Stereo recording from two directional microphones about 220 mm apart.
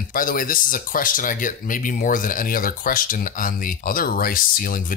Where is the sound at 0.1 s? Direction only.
40° left (ahead or behind).